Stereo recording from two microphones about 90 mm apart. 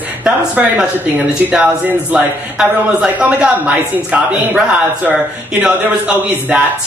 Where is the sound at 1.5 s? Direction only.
15° right (ahead or behind).